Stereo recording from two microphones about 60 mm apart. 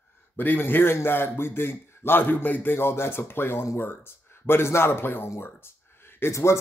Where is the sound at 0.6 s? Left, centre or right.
Left.